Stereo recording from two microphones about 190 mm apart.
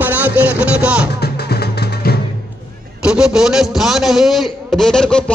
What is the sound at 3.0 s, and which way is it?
A man's voice, 5° right (ahead or behind).